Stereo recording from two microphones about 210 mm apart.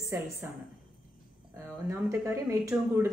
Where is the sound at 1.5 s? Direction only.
10° right (ahead or behind).